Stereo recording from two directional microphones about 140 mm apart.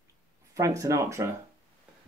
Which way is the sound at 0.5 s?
20° right (ahead or behind).